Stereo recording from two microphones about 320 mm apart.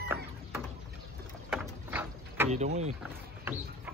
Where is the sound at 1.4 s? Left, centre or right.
Centre.